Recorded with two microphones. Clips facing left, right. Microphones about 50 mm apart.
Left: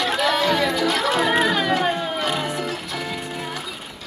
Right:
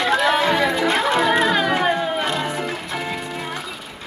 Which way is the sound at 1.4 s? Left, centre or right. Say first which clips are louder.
Right 2 dB; centre.